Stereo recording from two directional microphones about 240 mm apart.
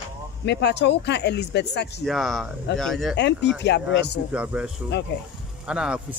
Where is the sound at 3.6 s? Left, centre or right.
Left.